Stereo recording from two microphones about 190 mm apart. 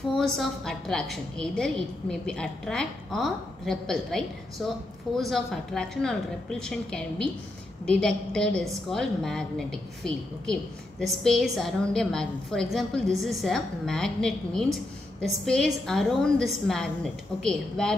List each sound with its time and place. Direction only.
0.2 s a woman's voice: centre (ahead or behind)